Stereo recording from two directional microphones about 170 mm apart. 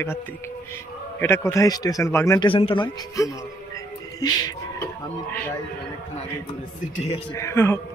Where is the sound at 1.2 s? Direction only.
15° left (ahead or behind).